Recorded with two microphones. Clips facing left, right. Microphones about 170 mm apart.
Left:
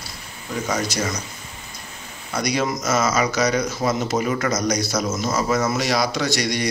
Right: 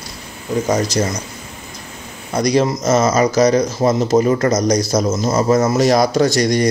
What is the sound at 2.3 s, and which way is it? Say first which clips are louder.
Speech: right 7 dB; 35° right (ahead or behind).